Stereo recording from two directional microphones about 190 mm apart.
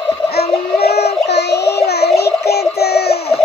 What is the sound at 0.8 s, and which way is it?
Music, 60° left (ahead or behind).